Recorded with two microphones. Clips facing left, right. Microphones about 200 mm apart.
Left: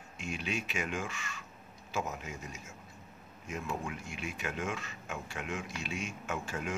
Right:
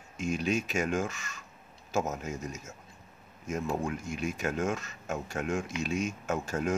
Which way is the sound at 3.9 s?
40° right (ahead or behind).